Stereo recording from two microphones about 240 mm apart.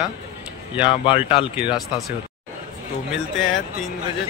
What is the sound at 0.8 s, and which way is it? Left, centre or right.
Speech, left.